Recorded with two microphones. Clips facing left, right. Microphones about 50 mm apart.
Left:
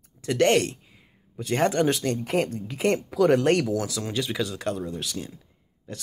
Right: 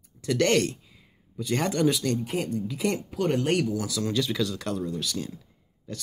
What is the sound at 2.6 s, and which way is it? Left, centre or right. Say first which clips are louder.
Speech: left 4 dB; left.